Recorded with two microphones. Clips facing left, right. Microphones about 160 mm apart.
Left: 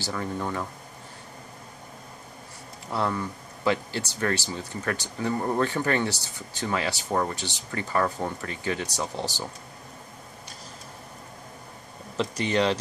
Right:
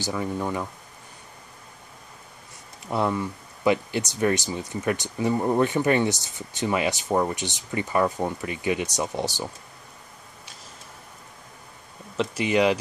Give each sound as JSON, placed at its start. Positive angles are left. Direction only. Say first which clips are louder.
{"t": 0.0, "sound": "speech", "louder": "right 3 dB", "side_deg": -10}
{"t": 2.9, "sound": "speech", "louder": "right 3 dB", "side_deg": -15}
{"t": 12.2, "sound": "speech", "louder": "right 3 dB", "side_deg": -5}